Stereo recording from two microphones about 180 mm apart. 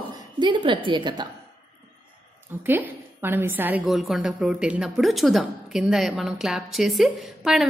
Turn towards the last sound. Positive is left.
turn(degrees=0)  # may be behind; listen again after turning